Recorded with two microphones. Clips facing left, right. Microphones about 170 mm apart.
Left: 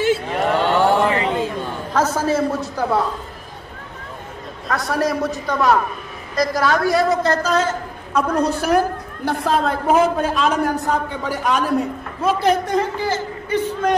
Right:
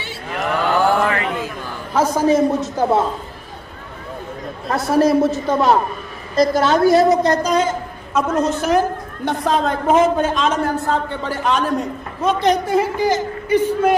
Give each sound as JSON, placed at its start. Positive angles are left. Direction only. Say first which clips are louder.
{"t": 0.3, "sound": "a sound", "louder": "left 2 dB", "side_deg": 30}
{"t": 2.0, "sound": "a woman's voice", "louder": "right 4 dB", "side_deg": -15}
{"t": 4.6, "sound": "a woman's voice", "louder": "right 5 dB", "side_deg": -25}
{"t": 8.5, "sound": "a man's voice", "louder": "right 1 dB", "side_deg": 10}